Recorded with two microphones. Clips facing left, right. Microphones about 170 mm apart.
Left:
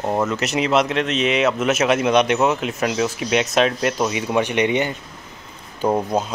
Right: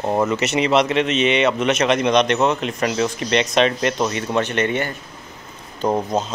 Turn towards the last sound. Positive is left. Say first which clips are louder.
# even
turn(degrees=5)  # may be behind; listen again after turning